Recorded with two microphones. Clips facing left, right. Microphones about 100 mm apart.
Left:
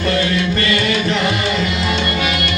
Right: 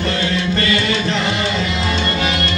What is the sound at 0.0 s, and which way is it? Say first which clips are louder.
Music: left 2 dB; 30° right (ahead or behind).